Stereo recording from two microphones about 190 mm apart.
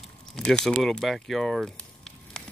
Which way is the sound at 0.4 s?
5° left (ahead or behind).